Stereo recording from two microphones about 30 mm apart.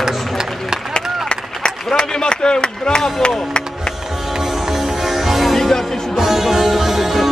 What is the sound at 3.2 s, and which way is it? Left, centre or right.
Speech, left.